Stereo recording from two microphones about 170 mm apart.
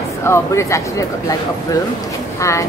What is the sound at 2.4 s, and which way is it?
Speech, 20° left (ahead or behind).